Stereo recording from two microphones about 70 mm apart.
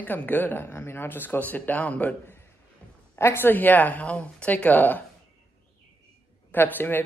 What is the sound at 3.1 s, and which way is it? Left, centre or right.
Speech, left.